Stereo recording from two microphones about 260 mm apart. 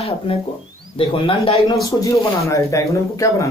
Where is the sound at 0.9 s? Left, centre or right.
Left.